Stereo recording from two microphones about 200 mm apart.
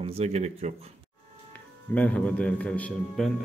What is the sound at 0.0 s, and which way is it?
Speech, 35° right (ahead or behind).